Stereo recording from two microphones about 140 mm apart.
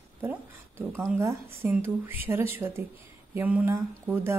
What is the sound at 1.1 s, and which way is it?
A woman's voice, 15° right (ahead or behind).